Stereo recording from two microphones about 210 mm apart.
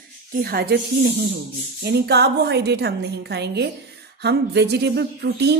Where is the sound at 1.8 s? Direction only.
50° right (ahead or behind).